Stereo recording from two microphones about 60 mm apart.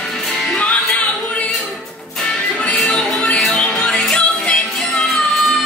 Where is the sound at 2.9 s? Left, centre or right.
Centre.